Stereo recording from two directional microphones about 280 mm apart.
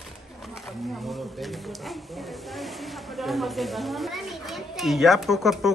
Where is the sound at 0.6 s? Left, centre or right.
Centre.